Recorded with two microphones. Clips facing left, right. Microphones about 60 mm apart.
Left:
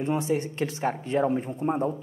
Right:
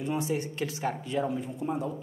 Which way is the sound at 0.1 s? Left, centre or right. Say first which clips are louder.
Left 4 dB; left.